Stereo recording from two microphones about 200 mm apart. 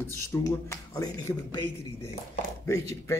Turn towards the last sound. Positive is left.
turn(degrees=15)  # may be behind; listen again after turning